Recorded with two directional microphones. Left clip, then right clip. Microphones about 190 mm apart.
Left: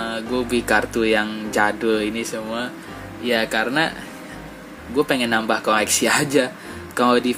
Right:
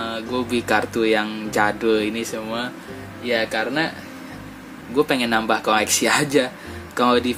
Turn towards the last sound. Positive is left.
turn(degrees=0)  # may be behind; listen again after turning